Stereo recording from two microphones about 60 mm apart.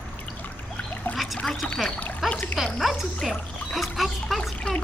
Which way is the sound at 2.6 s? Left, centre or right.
Centre.